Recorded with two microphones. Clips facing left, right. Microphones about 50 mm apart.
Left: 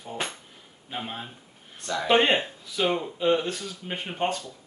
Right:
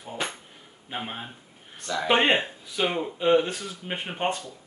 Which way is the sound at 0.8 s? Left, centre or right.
Centre.